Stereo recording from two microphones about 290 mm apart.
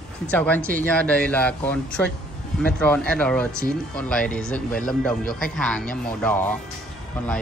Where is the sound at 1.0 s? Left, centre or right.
Centre.